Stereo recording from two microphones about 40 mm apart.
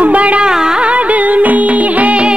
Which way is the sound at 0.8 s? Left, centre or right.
Right.